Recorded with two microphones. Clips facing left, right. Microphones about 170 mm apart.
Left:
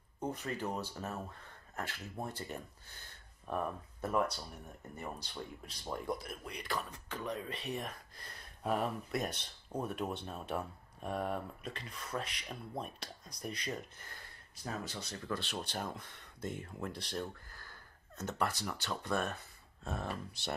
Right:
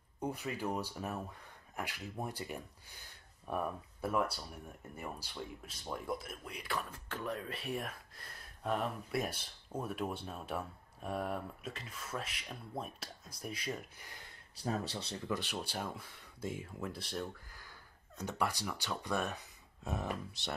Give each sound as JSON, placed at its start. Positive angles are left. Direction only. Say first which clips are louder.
{"t": 0.2, "sound": "speech", "louder": "even", "side_deg": -10}
{"t": 14.6, "sound": "speech", "louder": "right 4 dB", "side_deg": -35}
{"t": 15.1, "sound": "speech", "louder": "right 1 dB", "side_deg": -15}
{"t": 17.5, "sound": "a sound", "louder": "left 1 dB", "side_deg": -15}
{"t": 18.9, "sound": "speech", "louder": "left 1 dB", "side_deg": -15}
{"t": 20.4, "sound": "speech", "louder": "left 1 dB", "side_deg": 0}